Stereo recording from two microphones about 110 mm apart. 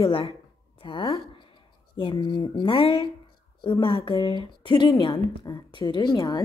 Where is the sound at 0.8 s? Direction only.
45° left (ahead or behind).